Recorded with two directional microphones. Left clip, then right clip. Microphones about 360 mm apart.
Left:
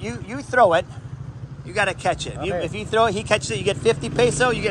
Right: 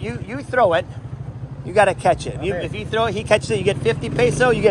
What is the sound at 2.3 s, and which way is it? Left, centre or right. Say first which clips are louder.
Speech: right 2 dB; left.